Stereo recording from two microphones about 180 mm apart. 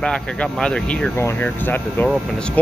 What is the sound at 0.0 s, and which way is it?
A man's voice, 5° left (ahead or behind).